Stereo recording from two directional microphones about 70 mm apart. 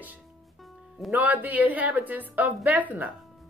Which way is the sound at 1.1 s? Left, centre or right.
Right.